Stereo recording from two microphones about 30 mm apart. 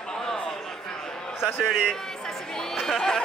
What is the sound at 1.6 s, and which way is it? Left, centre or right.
Speech, right.